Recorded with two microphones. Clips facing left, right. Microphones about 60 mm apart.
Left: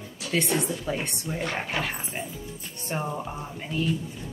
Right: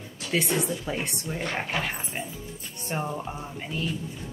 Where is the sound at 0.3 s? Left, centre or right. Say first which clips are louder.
Even; centre.